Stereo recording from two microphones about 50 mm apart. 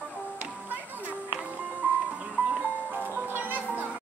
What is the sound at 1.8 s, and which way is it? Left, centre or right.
Music, right.